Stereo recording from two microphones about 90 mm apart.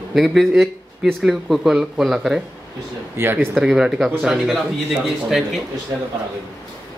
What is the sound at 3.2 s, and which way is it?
Speech, 25° right (ahead or behind).